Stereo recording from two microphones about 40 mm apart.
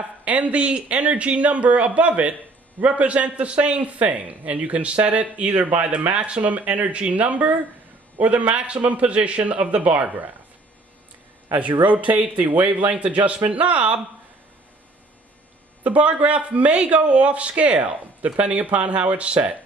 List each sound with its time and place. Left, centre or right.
0.0 s a man's voice: right
11.5 s a man's voice: right
15.8 s a man's voice: right